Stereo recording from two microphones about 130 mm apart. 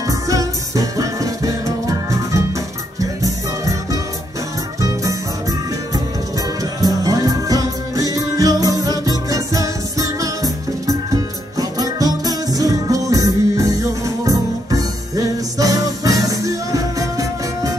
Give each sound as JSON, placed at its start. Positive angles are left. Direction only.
{"t": 0.0, "sound": "music", "side_deg": -25}
{"t": 6.8, "sound": "music", "side_deg": -25}